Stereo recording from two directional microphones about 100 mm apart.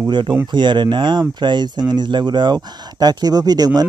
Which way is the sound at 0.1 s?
50° right (ahead or behind).